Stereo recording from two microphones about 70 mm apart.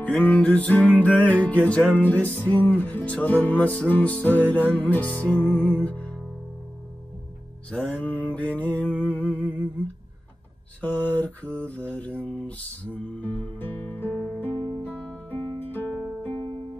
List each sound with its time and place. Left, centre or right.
0.0 s music: left
7.7 s music: centre
10.8 s music: centre